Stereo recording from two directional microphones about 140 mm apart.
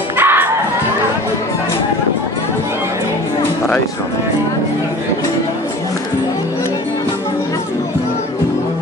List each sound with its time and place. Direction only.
0.2 s crowd: 15° right (ahead or behind)